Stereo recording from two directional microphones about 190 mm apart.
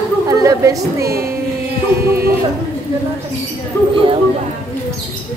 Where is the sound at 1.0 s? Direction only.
55° right (ahead or behind).